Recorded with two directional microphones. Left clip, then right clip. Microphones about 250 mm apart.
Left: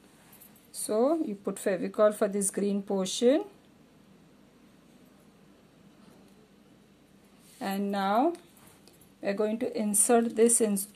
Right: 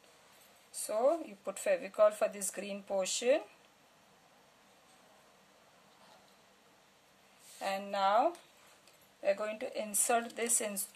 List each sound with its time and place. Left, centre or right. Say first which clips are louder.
0.7 s speech: left 4 dB; centre
7.5 s a woman's voice: left 3 dB; left